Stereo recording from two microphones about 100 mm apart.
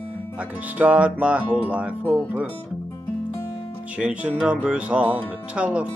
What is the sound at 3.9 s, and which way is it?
Speech, 10° right (ahead or behind).